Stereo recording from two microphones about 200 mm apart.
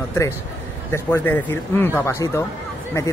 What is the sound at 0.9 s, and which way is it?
Speech, 10° left (ahead or behind).